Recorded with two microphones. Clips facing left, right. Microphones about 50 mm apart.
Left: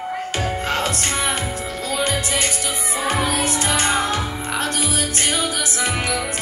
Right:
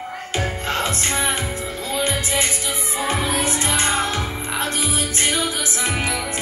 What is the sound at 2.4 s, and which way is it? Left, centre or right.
Music, left.